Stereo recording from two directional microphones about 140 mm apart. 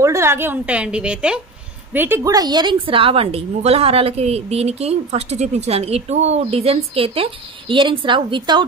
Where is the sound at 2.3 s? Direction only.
30° right (ahead or behind).